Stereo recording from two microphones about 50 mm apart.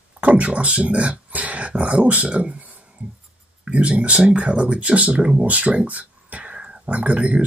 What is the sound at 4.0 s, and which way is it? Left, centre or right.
Speech, right.